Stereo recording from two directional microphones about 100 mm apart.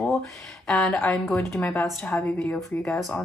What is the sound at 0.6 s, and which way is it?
Speech, 5° left (ahead or behind).